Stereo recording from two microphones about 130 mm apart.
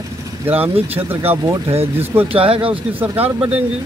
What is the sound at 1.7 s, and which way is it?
Speech, 50° right (ahead or behind).